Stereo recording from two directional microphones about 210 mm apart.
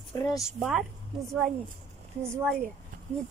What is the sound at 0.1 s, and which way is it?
Speech, 15° left (ahead or behind).